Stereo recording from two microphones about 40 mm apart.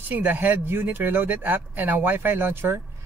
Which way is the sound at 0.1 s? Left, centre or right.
Right.